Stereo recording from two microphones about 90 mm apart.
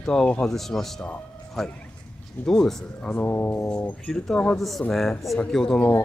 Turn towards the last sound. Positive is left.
turn(degrees=5)  # may be behind; listen again after turning